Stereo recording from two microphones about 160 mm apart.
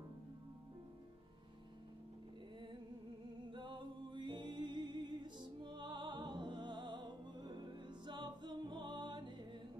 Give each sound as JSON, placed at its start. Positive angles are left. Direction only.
{"t": 3.5, "sound": "music", "side_deg": -30}